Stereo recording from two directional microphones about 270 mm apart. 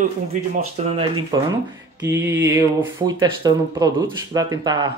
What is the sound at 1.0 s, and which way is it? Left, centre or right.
Speech, centre.